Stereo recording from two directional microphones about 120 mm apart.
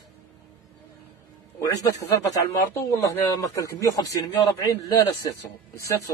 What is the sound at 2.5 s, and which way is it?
Speech, 25° left (ahead or behind).